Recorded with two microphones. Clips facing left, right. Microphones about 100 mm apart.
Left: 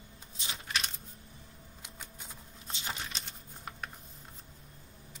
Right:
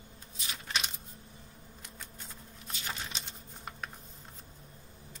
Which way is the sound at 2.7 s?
25° left (ahead or behind).